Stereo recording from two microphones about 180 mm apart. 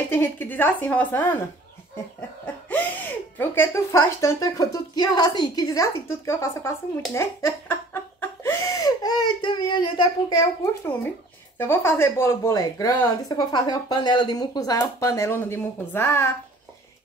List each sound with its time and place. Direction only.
0.1 s speech: 10° left (ahead or behind)
2.4 s speech: 10° left (ahead or behind)